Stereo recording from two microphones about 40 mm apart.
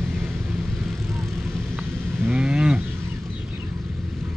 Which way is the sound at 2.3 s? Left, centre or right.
Right.